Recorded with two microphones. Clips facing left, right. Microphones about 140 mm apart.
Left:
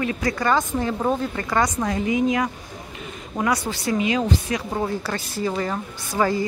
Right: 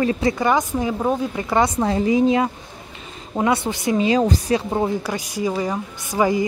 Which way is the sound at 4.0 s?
35° right (ahead or behind).